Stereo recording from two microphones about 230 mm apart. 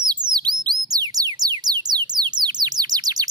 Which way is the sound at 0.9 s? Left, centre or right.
Centre.